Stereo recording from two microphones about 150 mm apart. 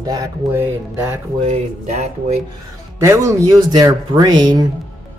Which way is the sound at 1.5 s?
50° right (ahead or behind).